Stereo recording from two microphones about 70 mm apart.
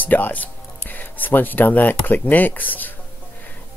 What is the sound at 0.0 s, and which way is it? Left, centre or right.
Speech, left.